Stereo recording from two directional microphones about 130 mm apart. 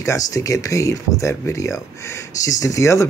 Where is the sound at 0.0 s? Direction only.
25° left (ahead or behind).